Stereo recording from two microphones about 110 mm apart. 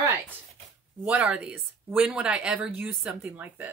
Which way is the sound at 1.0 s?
10° right (ahead or behind).